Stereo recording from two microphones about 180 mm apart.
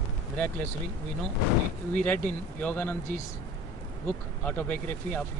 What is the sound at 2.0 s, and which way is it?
Speech, 10° left (ahead or behind).